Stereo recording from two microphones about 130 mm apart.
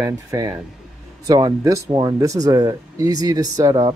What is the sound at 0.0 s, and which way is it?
Speech, 30° right (ahead or behind).